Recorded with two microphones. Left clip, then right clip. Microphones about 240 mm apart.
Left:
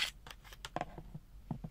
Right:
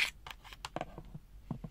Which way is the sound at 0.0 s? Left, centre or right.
Centre.